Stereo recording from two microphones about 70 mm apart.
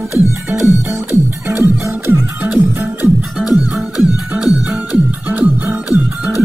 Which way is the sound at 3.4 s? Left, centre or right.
Centre.